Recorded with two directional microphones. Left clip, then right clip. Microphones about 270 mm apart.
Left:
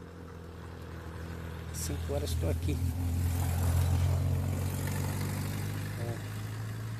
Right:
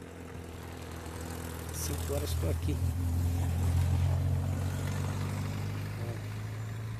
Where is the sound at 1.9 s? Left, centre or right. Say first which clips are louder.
Even; centre.